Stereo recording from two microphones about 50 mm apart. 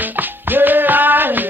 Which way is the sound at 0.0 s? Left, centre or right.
Right.